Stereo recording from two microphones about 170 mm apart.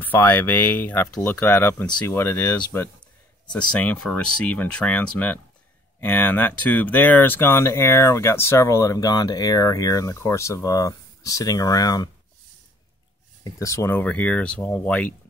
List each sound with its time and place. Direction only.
0.0 s speech: 10° left (ahead or behind)
13.4 s speech: 20° left (ahead or behind)